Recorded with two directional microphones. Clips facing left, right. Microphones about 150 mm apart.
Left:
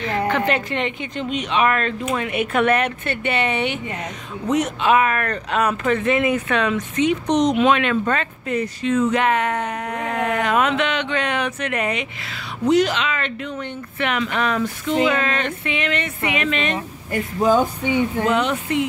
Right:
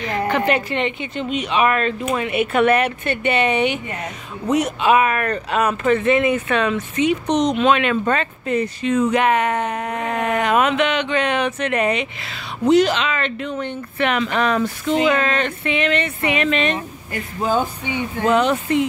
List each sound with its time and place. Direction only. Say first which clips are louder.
0.0 s a woman's voice: right 1 dB; 15° right (ahead or behind)
8.0 s speech: right 2 dB; 20° right (ahead or behind)
8.8 s speech: right 1 dB; 15° right (ahead or behind); by 16.7 s 35° right (ahead or behind)
17.5 s a sound: left 3 dB; 45° left (ahead or behind)
18.2 s speech: right 3 dB; 40° right (ahead or behind)